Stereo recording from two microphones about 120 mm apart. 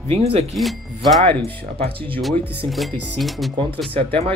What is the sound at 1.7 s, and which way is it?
Speech, 50° right (ahead or behind).